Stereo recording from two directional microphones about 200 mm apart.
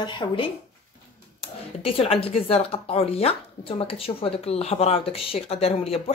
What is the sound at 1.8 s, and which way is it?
Speech, 30° left (ahead or behind).